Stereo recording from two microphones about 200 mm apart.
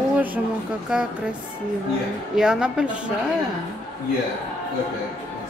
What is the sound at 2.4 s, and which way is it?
Speech, 5° right (ahead or behind).